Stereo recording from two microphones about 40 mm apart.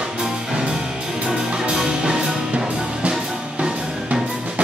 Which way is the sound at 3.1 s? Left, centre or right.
Right.